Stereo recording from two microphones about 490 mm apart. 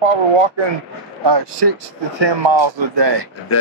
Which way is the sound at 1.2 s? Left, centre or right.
Right.